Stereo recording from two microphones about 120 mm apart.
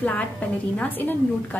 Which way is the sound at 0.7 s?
10° left (ahead or behind).